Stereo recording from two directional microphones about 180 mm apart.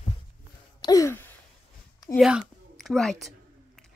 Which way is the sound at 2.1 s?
Centre (ahead or behind).